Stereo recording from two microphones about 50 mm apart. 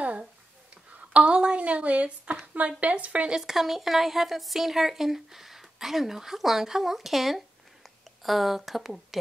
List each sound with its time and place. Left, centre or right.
0.9 s a sound: right
2.4 s a woman's voice: right
3.3 s a woman's voice: centre